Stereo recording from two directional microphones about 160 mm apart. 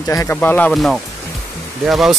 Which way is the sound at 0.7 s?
Centre (ahead or behind).